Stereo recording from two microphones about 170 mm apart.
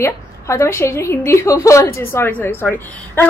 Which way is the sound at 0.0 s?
15° left (ahead or behind).